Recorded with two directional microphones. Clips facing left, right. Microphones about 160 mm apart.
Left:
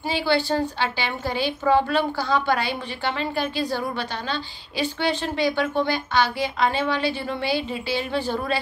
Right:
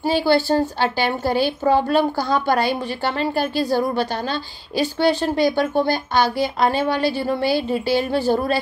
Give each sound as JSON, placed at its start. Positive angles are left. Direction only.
{"t": 0.0, "sound": "a woman's voice", "side_deg": -40}